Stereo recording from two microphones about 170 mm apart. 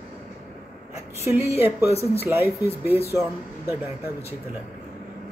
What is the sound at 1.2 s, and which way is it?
A woman's voice, 15° right (ahead or behind).